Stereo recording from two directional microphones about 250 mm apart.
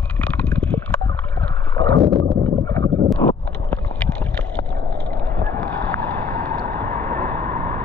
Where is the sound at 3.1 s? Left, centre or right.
Centre.